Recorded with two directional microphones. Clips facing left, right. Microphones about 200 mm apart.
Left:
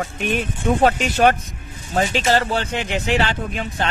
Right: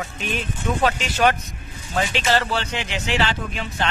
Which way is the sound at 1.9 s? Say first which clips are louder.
Left 3 dB; 40° left (ahead or behind).